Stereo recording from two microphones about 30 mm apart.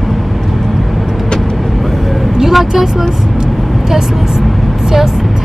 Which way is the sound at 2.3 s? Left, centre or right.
Centre.